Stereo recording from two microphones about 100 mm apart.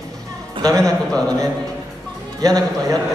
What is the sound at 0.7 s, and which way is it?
Speech, 10° left (ahead or behind).